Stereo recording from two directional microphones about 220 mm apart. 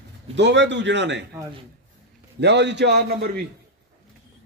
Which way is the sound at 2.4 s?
50° right (ahead or behind).